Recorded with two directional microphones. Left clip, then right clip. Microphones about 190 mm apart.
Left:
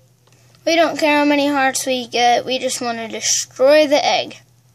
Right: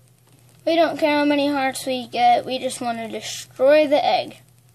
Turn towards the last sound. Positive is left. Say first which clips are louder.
# left 3 dB
turn(degrees=20)  # may be behind; listen again after turning